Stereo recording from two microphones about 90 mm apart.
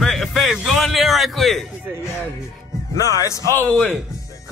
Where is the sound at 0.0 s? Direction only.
Centre (ahead or behind).